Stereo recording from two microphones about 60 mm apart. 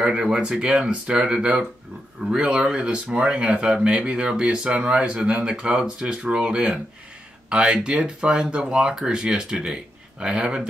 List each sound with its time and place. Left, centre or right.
0.0 s speech: centre